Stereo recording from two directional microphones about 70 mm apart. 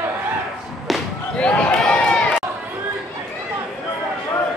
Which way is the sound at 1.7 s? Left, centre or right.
Centre.